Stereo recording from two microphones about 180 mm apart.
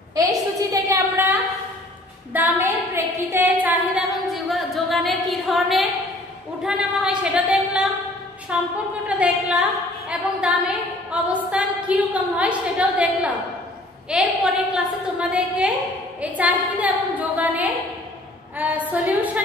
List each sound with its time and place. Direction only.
0.7 s a sound: 15° right (ahead or behind); by 5.9 s centre (ahead or behind)
6.6 s a woman's voice: 5° right (ahead or behind)
18.9 s a woman's voice: 10° right (ahead or behind)